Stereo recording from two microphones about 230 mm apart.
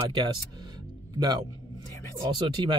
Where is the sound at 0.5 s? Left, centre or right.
Centre.